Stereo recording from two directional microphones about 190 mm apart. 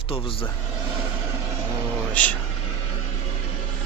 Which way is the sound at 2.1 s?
5° left (ahead or behind).